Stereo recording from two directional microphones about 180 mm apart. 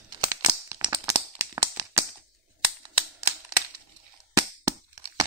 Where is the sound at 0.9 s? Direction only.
15° right (ahead or behind).